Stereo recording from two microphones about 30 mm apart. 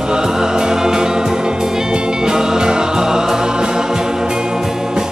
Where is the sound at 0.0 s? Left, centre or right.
Right.